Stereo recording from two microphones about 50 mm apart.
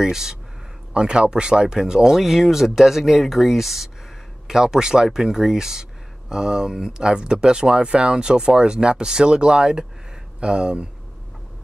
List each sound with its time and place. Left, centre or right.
0.0 s speech: centre